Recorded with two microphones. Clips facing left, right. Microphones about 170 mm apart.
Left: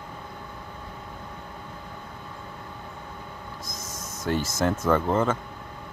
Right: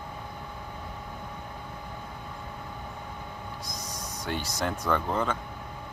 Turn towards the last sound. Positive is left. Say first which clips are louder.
# left 5 dB
turn(degrees=5)  # may be behind; listen again after turning